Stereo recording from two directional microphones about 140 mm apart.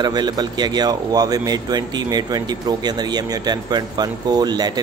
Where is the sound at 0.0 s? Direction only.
30° right (ahead or behind).